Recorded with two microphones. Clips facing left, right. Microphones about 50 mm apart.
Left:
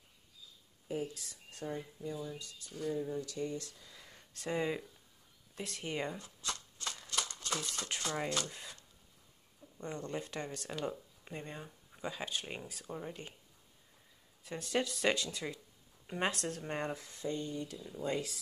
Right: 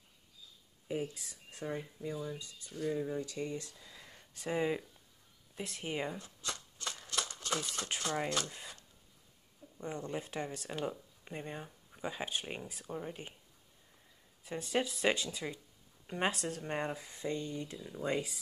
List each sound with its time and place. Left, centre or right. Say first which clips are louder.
1.1 s speech: even; centre
2.9 s speech: right 1 dB; right
3.8 s a sound: right 2 dB; centre
5.6 s shuffling cards: right 1 dB; centre
7.8 s speech: right 1 dB; centre
9.8 s speech: right 1 dB; centre
14.4 s speech: right 1 dB; centre
17.1 s speech: even; right
17.7 s speech: right 3 dB; centre